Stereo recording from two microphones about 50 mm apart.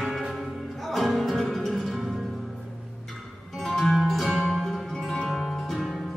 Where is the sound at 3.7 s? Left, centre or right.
Centre.